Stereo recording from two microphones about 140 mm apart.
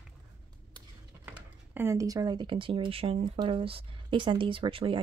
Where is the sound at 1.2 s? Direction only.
15° right (ahead or behind).